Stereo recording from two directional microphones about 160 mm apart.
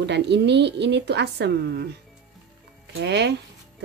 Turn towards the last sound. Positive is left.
turn(degrees=-90)